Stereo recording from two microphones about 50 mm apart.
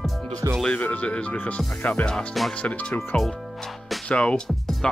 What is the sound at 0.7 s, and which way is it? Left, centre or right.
Speech, left.